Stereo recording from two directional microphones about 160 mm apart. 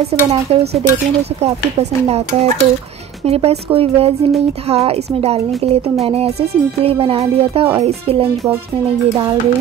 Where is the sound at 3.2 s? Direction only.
40° right (ahead or behind).